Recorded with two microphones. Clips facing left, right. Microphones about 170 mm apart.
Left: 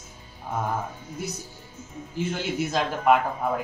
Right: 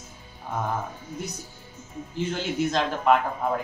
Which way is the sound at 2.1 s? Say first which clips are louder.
Even; 10° left (ahead or behind).